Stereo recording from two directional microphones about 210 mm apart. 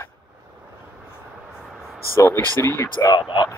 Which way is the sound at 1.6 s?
Centre (ahead or behind).